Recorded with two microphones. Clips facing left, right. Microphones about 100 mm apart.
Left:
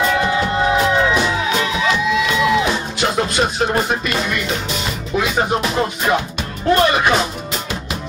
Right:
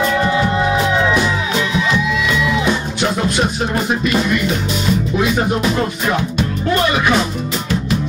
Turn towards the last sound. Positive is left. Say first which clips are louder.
# even
turn(degrees=25)  # may be behind; listen again after turning